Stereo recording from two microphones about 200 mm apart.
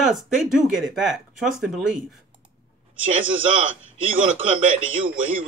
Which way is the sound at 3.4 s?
25° right (ahead or behind).